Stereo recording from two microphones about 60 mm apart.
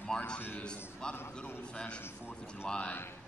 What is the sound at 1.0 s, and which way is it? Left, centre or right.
Speech, centre.